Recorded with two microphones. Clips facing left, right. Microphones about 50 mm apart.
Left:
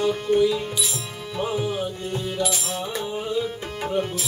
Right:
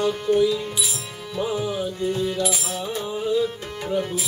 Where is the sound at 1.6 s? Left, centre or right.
Centre.